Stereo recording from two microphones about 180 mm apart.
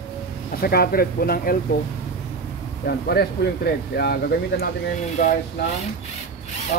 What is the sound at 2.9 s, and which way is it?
Speech, 60° left (ahead or behind).